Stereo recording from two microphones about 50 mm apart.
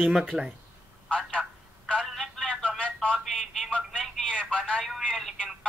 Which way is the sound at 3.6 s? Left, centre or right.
Left.